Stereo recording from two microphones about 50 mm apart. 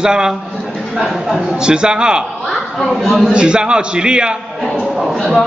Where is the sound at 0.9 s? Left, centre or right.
Centre.